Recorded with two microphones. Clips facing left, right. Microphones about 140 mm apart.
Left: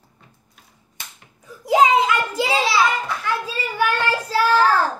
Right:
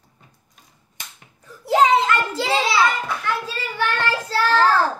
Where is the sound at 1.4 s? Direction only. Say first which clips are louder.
Left 1 dB; 10° left (ahead or behind).